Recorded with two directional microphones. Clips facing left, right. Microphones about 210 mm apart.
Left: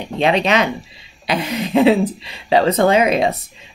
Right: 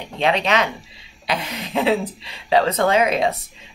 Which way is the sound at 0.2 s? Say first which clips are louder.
Left 3 dB; 15° left (ahead or behind).